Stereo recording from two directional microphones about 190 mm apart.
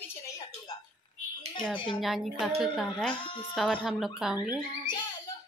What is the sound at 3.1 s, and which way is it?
Speech, 25° left (ahead or behind).